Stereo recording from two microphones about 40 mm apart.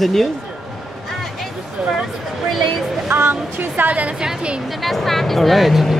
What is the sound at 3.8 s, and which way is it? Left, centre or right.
Speech, right.